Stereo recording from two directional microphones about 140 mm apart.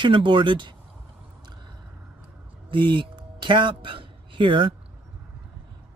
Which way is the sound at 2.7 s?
35° right (ahead or behind).